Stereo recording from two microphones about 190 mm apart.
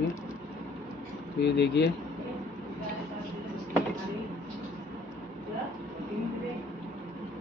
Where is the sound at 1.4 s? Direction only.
65° left (ahead or behind).